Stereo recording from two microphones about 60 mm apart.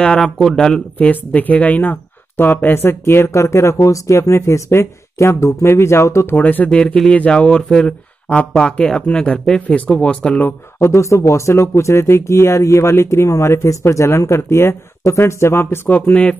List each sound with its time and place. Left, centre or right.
0.2 s speech: centre
0.9 s speech: left
3.3 s speech: left
6.2 s speech: left
10.8 s speech: left
15.9 s speech: left